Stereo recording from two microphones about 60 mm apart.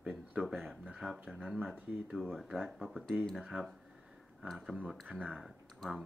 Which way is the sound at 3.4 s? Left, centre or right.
Centre.